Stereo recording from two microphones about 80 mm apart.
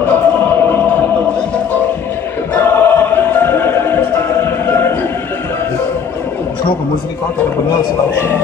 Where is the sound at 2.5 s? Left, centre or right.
Left.